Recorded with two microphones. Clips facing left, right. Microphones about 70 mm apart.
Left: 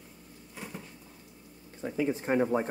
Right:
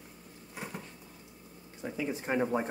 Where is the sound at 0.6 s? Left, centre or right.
Centre.